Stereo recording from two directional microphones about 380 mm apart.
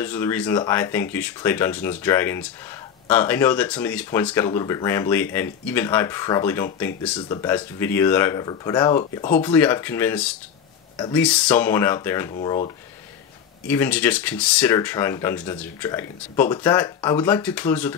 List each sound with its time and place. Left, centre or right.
0.0 s speech: centre
13.7 s speech: centre